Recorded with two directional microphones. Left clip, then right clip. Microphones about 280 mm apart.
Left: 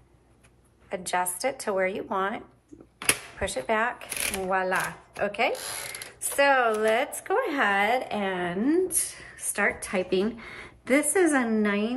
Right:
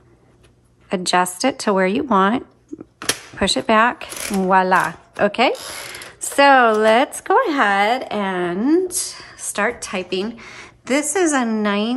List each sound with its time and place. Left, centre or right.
0.8 s speech: right
9.8 s a woman's voice: centre